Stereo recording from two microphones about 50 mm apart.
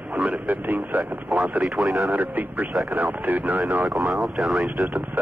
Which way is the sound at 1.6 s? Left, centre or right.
Centre.